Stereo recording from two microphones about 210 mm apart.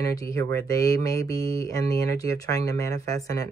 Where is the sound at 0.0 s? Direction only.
15° left (ahead or behind).